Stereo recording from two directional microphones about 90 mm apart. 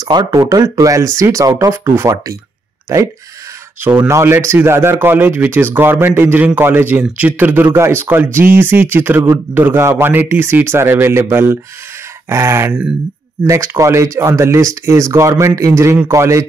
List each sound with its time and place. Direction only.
0.0 s speech: 50° right (ahead or behind); by 2.3 s 35° right (ahead or behind)
3.8 s a man's voice: 20° right (ahead or behind)
4.1 s a man's voice: 30° right (ahead or behind)